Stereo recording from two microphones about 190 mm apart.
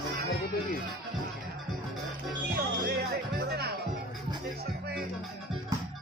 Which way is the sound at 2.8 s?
55° right (ahead or behind).